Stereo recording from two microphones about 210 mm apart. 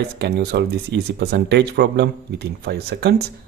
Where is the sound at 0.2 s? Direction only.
50° right (ahead or behind).